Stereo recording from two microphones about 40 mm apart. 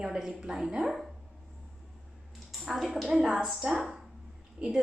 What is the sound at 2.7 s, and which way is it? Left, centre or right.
Speech, centre.